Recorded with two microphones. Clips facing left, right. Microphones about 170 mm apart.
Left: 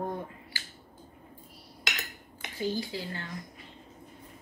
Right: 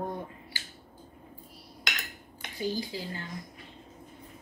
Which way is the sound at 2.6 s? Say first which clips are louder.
Even; 15° right (ahead or behind).